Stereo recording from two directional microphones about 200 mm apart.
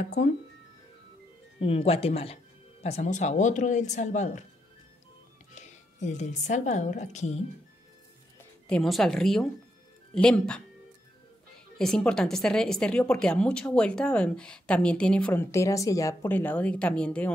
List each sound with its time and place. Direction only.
0.2 s speech: 35° left (ahead or behind)
1.6 s speech: 30° left (ahead or behind)
5.5 s a woman's voice: 35° left (ahead or behind)
8.6 s a woman's voice: 5° left (ahead or behind)
11.8 s a woman's voice: 5° left (ahead or behind)